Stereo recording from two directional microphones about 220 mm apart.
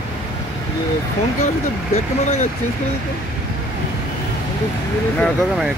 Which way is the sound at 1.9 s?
30° left (ahead or behind).